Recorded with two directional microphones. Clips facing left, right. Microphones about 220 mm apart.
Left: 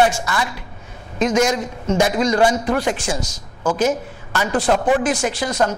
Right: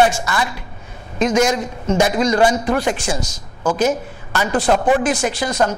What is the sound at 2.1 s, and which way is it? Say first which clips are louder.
Speech: right 1 dB; 25° right (ahead or behind).